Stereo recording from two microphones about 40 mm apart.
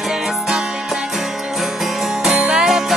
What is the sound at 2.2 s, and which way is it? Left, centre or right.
Music, centre.